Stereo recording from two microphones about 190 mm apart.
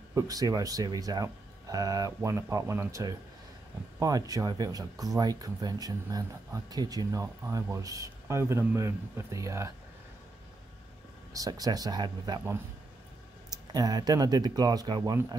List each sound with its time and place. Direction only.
0.1 s speech: 20° right (ahead or behind)
11.3 s speech: 20° right (ahead or behind)